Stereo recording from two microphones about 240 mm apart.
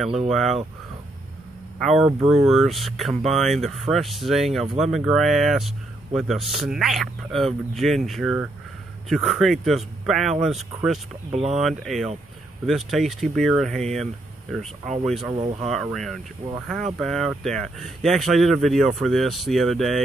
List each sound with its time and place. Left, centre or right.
0.3 s speech: centre
1.8 s speech: centre
15.4 s speech: right
15.7 s speech: centre